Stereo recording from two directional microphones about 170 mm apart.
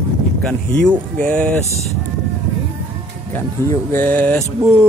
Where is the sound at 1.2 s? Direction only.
5° left (ahead or behind).